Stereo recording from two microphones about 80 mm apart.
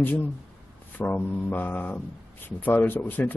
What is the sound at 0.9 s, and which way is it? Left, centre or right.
A man's voice, left.